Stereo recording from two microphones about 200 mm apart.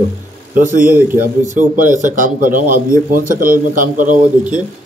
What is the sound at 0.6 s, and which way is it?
Speech, 40° right (ahead or behind).